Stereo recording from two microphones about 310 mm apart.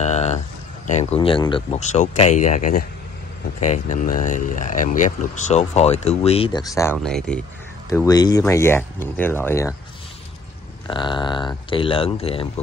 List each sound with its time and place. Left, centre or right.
0.0 s a sound: left
0.8 s speech: left
10.9 s speech: centre